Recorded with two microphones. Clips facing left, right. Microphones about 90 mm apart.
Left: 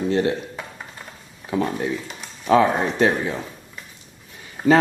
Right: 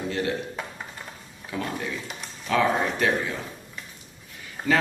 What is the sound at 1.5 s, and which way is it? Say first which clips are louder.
A man's voice: left 7 dB; 30° left (ahead or behind).